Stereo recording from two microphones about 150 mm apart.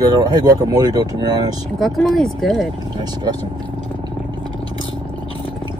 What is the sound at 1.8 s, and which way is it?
Speech, centre (ahead or behind).